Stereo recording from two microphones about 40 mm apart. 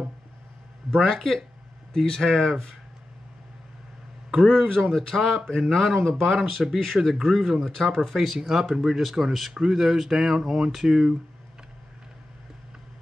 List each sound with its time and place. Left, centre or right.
0.8 s speech: centre
4.6 s speech: centre
9.5 s speech: centre
9.8 s speech: centre